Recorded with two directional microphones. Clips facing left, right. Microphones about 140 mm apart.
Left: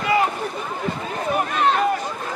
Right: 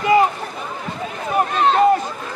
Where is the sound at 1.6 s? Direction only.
30° right (ahead or behind).